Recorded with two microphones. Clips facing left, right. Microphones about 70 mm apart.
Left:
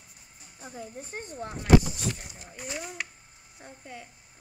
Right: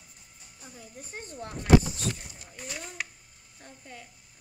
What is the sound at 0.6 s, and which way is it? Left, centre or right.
Speech, left.